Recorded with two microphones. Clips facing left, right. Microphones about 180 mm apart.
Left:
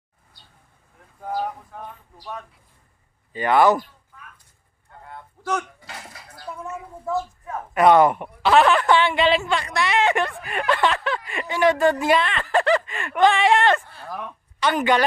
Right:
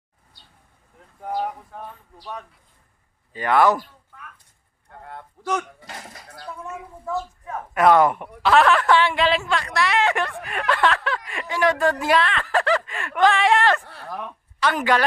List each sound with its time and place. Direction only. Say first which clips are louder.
1.2 s speech: even; centre (ahead or behind)
3.3 s speech: left 1 dB; centre (ahead or behind)
4.9 s a sound: right 2 dB; 65° right (ahead or behind)
7.7 s a woman's voice: left 1 dB; centre (ahead or behind)